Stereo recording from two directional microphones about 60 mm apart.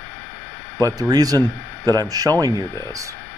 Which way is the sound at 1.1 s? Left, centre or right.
Right.